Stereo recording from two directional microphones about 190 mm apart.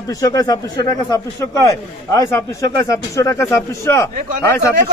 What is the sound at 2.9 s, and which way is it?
A man's voice, 15° left (ahead or behind).